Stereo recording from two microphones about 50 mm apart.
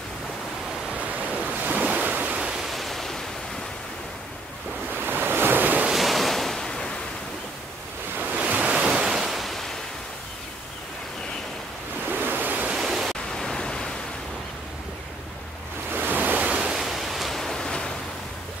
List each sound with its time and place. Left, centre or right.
0.9 s waves: right
2.3 s pink noise: centre
2.7 s waves: centre
4.9 s waves: right
5.9 s waves: centre
8.5 s waves: right
9.3 s waves: centre
12.1 s waves: right
12.7 s pink noise: centre
13.4 s pink noise: centre
15.9 s waves: right
16.4 s waves: centre
16.7 s pink noise: centre